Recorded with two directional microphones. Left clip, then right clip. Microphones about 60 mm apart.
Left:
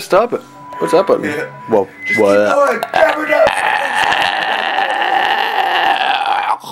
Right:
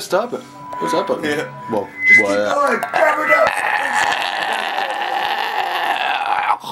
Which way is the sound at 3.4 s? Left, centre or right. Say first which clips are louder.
Left 4 dB; left.